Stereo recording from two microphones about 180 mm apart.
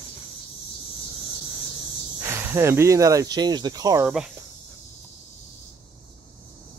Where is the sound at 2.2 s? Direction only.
15° right (ahead or behind).